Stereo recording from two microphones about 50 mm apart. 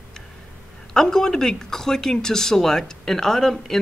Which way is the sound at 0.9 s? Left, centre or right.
Centre.